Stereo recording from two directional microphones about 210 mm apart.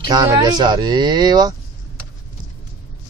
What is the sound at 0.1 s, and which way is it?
Speech, 20° right (ahead or behind).